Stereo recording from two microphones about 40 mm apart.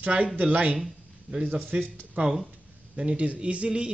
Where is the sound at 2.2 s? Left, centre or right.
Right.